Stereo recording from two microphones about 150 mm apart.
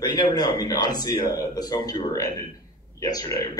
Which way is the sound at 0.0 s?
30° left (ahead or behind).